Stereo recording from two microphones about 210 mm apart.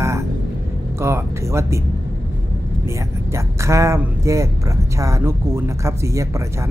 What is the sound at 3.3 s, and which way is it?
Speech, 15° right (ahead or behind).